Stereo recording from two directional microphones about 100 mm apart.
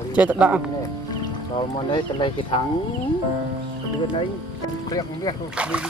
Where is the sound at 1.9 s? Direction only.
50° left (ahead or behind).